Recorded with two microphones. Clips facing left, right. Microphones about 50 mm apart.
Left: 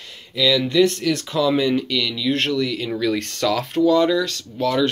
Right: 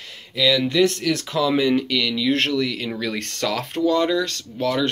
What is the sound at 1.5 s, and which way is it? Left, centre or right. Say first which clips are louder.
Speech: right 1 dB; right.